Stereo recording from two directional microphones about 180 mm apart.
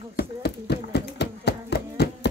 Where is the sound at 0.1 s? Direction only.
65° left (ahead or behind).